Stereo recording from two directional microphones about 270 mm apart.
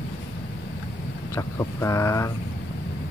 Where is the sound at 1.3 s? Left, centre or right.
Centre.